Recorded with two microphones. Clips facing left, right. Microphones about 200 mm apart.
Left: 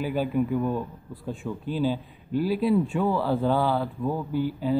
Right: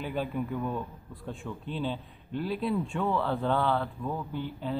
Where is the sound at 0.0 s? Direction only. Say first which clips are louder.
Left 7 dB; 5° left (ahead or behind).